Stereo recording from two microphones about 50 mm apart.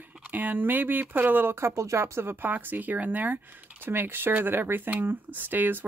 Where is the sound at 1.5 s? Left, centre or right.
Right.